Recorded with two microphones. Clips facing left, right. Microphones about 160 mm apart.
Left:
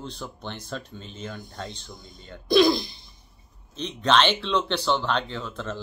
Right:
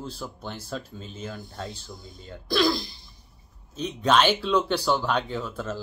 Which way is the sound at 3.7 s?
10° right (ahead or behind).